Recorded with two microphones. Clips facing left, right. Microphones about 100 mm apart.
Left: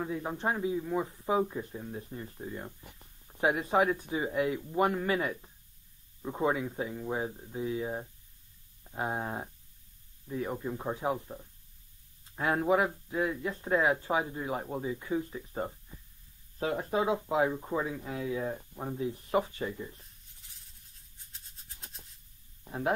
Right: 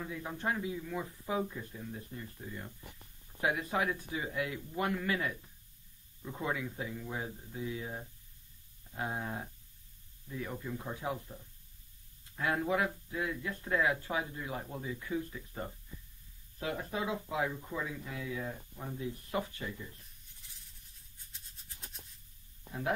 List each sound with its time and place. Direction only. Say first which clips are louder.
0.0 s speech: left 5 dB; 30° left (ahead or behind)
12.4 s speech: left 5 dB; 25° left (ahead or behind)
22.7 s speech: left 4 dB; 35° left (ahead or behind)